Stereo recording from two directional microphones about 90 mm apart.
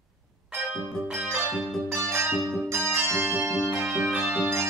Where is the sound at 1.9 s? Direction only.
30° right (ahead or behind).